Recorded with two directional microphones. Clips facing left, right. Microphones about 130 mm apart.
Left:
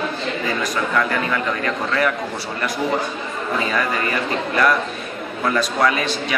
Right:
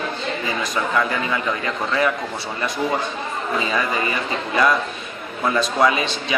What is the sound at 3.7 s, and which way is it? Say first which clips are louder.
A man's voice: left 1 dB; 15° right (ahead or behind).